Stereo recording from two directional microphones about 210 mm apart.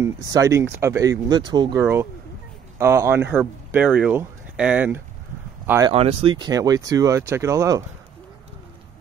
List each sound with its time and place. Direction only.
0.0 s speech: 15° right (ahead or behind)
5.9 s speech: 30° right (ahead or behind)